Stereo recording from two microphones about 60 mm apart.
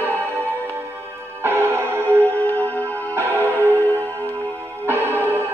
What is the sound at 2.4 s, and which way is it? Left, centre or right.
Music, left.